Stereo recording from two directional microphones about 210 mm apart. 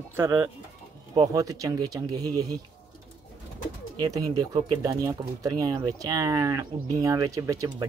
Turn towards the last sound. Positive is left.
turn(degrees=-15)  # may be behind; listen again after turning